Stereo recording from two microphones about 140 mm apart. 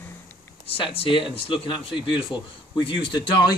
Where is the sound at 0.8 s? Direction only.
40° left (ahead or behind).